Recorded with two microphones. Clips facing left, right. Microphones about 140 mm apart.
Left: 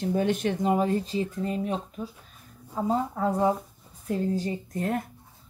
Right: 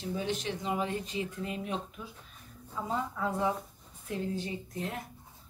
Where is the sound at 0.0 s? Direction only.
55° left (ahead or behind).